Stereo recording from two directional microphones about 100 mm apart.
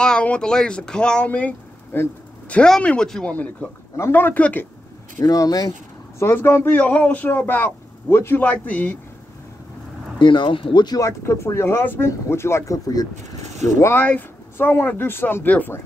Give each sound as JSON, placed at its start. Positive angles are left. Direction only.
{"t": 0.0, "sound": "speech", "side_deg": 10}
{"t": 2.5, "sound": "speech", "side_deg": 10}
{"t": 3.9, "sound": "speech", "side_deg": 25}
{"t": 5.2, "sound": "speech", "side_deg": 35}
{"t": 6.1, "sound": "speech", "side_deg": 25}
{"t": 10.1, "sound": "speech", "side_deg": 50}
{"t": 11.0, "sound": "speech", "side_deg": 30}
{"t": 13.7, "sound": "speech", "side_deg": 25}